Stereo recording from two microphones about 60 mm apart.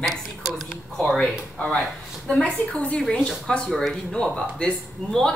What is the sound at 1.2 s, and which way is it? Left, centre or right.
Speech, centre.